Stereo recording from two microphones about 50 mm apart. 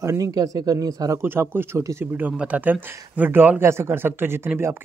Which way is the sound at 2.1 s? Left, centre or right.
Right.